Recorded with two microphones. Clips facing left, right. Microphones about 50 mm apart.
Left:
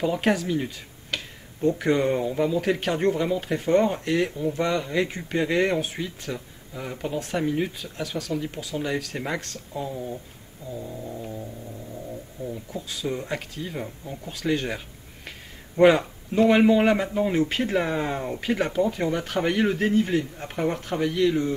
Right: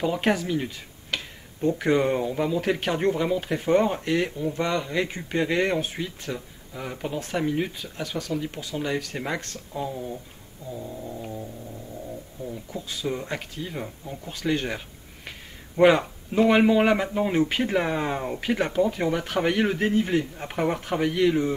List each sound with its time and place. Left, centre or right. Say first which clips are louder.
0.0 s speech: left 1 dB; centre